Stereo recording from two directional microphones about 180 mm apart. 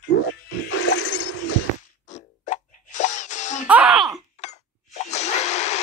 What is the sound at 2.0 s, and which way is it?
Music, 40° left (ahead or behind).